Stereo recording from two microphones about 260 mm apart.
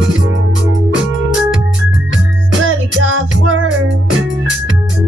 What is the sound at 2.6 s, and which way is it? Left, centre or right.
Music, right.